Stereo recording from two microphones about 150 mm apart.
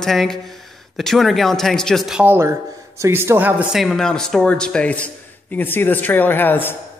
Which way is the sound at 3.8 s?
5° left (ahead or behind).